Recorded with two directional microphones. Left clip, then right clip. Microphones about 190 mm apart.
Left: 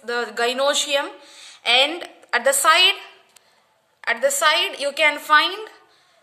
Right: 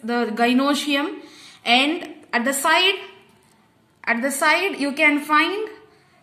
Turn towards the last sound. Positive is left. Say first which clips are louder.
# left 2 dB
turn(degrees=35)  # may be behind; listen again after turning